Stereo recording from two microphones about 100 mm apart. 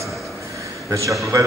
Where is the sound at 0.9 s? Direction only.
30° right (ahead or behind).